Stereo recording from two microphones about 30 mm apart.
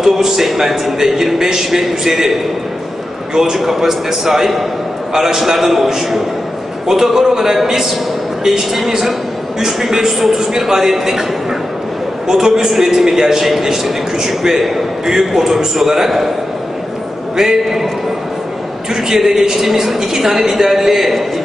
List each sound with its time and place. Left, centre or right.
0.0 s a man's voice: centre
3.5 s a man's voice: centre
12.3 s a man's voice: centre
17.4 s a man's voice: centre
19.0 s a man's voice: centre